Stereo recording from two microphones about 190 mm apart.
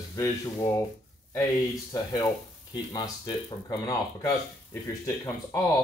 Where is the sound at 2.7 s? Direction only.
20° left (ahead or behind).